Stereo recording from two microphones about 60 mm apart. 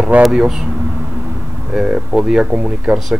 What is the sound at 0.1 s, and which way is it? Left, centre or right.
Speech, right.